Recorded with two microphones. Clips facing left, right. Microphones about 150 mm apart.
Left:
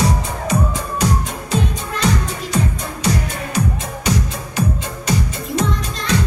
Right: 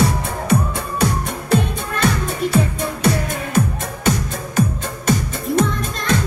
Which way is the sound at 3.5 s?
50° right (ahead or behind).